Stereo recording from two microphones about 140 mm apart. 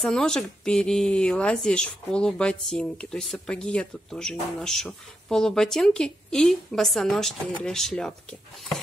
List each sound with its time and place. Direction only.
0.0 s speech: 5° left (ahead or behind)